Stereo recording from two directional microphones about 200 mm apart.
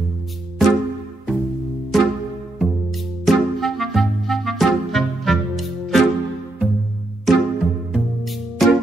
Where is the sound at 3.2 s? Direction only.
Centre (ahead or behind).